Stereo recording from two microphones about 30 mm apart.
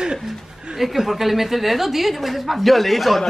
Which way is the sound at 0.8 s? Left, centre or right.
Centre.